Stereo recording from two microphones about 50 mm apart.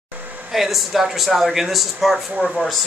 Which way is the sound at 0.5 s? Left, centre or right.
Centre.